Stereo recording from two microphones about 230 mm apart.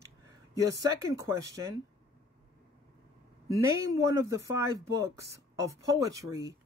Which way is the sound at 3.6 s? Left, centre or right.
Centre.